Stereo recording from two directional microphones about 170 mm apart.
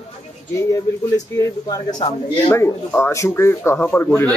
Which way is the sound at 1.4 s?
20° left (ahead or behind).